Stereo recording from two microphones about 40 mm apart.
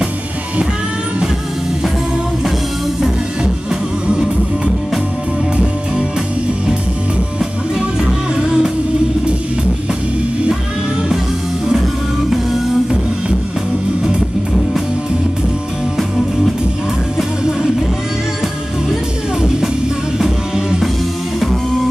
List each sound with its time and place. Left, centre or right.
8.0 s music: right
20.2 s music: centre